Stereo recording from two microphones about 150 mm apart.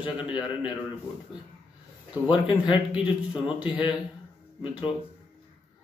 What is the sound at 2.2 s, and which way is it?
Speech, 30° left (ahead or behind).